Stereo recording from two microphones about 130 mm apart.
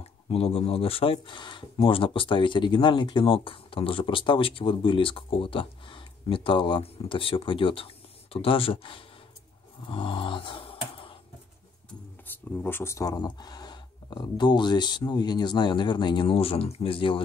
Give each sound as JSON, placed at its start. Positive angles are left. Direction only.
{"t": 0.3, "sound": "speech", "side_deg": 50}
{"t": 9.8, "sound": "a sound", "side_deg": 40}
{"t": 12.5, "sound": "speech", "side_deg": 15}